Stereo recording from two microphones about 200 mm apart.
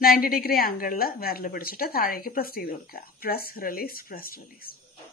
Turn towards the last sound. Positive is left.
turn(degrees=45)  # may be behind; listen again after turning